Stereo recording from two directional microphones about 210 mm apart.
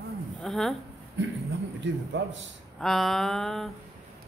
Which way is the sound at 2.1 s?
55° right (ahead or behind).